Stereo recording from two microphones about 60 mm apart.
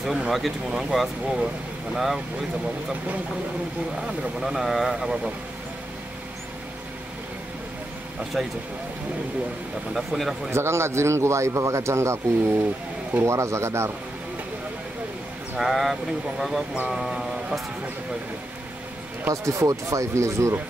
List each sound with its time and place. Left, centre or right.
0.3 s speech: centre
0.9 s speech: centre
4.4 s speech: centre
8.4 s speech: centre
9.9 s speech: centre
10.5 s speech: right
15.5 s speech: centre
19.3 s speech: right